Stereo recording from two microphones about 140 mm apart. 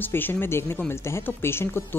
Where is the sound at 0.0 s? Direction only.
15° left (ahead or behind).